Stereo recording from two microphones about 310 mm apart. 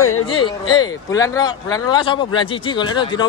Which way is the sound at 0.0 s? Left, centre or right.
Left.